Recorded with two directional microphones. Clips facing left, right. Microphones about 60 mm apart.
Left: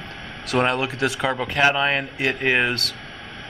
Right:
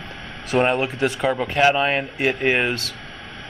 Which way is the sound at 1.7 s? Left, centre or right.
Left.